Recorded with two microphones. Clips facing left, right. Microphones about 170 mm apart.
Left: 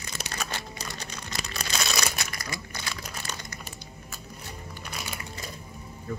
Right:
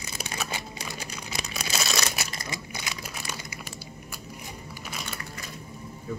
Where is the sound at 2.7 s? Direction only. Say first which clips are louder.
Even; 10° right (ahead or behind).